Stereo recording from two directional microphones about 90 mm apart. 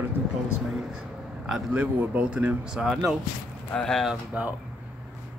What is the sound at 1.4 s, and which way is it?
Speech, 5° right (ahead or behind).